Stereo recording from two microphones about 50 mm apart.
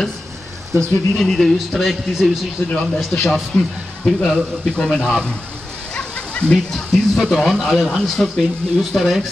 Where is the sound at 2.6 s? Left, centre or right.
Left.